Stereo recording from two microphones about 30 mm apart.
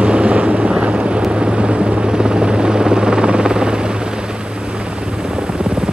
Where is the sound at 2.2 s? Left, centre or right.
Right.